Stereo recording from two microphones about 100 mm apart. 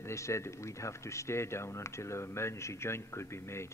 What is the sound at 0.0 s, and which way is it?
Speech, 30° left (ahead or behind).